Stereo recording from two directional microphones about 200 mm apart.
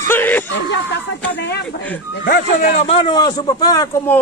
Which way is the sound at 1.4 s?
55° left (ahead or behind).